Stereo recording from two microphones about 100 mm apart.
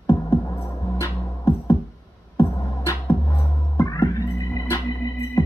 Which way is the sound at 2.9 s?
25° left (ahead or behind).